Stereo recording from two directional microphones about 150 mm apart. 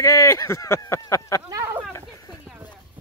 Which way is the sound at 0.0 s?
20° left (ahead or behind).